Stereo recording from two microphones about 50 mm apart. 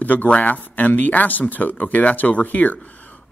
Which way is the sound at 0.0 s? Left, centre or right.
Left.